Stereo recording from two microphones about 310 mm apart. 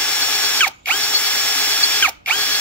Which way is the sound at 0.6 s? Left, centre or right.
Centre.